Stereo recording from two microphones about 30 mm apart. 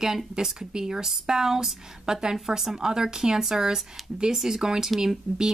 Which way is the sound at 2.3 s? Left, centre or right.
Centre.